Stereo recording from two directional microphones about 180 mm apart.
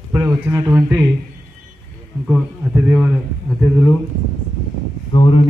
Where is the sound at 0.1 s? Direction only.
15° right (ahead or behind).